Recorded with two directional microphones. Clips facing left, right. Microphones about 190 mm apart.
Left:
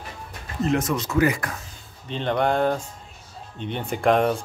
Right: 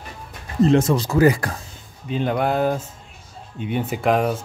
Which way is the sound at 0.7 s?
30° right (ahead or behind).